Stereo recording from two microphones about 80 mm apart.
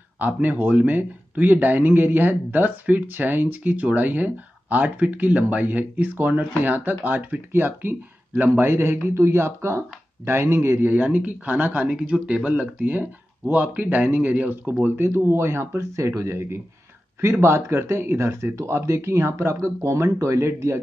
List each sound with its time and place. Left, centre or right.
0.2 s speech: right
10.9 s speech: centre; by 20.8 s right